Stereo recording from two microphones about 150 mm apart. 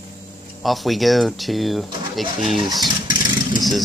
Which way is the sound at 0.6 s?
Centre (ahead or behind).